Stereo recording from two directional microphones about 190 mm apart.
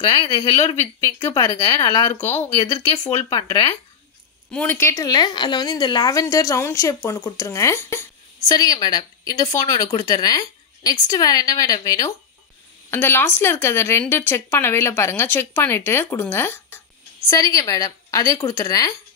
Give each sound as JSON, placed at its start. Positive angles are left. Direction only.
{"t": 0.1, "sound": "a woman's voice", "side_deg": 25}
{"t": 1.0, "sound": "a woman's voice", "side_deg": 20}
{"t": 2.0, "sound": "speech", "side_deg": 35}
{"t": 3.3, "sound": "a woman's voice", "side_deg": 20}
{"t": 4.5, "sound": "a woman's voice", "side_deg": 10}